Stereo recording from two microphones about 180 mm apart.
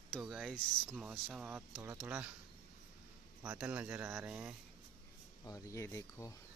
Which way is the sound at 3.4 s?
10° right (ahead or behind).